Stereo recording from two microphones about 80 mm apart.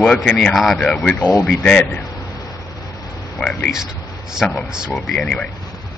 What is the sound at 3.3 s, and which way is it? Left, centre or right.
Speech, centre.